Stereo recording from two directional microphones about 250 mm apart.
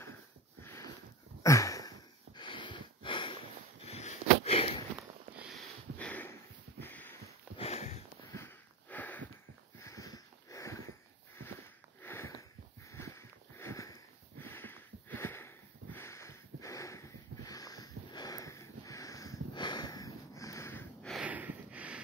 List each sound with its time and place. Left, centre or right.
0.6 s a sound: centre
3.8 s sniff: left
4.9 s sniff: centre
7.5 s sniff: left
8.4 s sniff: centre
12.0 s sniff: centre
12.9 s a sound: centre
14.4 s sniff: centre